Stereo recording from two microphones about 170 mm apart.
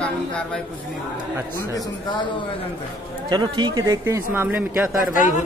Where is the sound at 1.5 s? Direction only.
25° left (ahead or behind).